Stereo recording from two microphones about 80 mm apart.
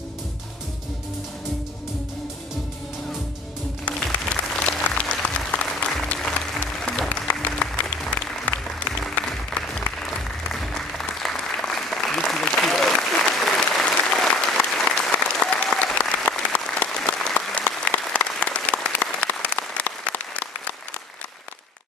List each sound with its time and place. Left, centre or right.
3.8 s applause: centre